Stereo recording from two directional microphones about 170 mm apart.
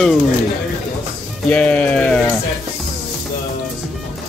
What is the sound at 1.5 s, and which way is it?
Music, 10° left (ahead or behind).